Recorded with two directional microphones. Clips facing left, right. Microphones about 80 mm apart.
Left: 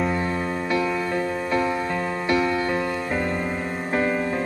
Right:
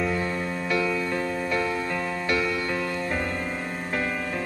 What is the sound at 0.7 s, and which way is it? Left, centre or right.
Music, left.